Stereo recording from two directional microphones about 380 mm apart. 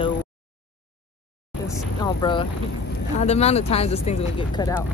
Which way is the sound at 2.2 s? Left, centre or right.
Centre.